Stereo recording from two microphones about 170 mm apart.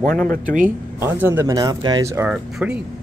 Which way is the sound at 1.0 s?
10° right (ahead or behind).